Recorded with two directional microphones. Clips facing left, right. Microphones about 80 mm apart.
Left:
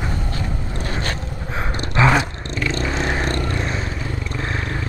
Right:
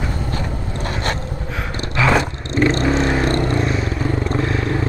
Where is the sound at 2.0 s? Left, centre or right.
Left.